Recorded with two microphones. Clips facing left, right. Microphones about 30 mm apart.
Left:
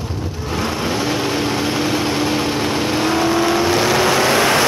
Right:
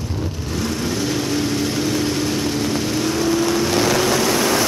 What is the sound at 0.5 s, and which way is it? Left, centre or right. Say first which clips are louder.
Vehicle: left 3 dB; left.